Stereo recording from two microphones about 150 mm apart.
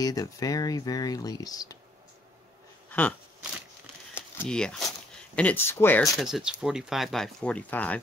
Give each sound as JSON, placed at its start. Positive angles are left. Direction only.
{"t": 0.0, "sound": "speech", "side_deg": 25}
{"t": 2.9, "sound": "a sound", "side_deg": 10}
{"t": 4.1, "sound": "crumpling", "side_deg": 5}
{"t": 5.3, "sound": "speech", "side_deg": 10}
{"t": 6.1, "sound": "speech", "side_deg": -5}